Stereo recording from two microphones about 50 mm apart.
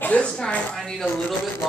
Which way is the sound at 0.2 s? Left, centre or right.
Centre.